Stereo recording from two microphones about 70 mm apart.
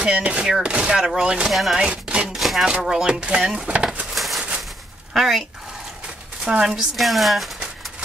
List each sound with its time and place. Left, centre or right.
0.0 s speech: centre
1.5 s speech: centre
1.8 s speech: centre
2.2 s speech: centre
3.6 s a sound: centre
4.1 s a sound: centre
5.1 s speech: centre